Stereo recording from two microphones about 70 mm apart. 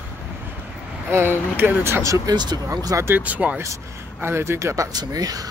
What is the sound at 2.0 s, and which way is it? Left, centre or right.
Speech, right.